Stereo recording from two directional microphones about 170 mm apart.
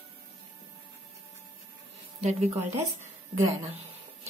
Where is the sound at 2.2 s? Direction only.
40° right (ahead or behind).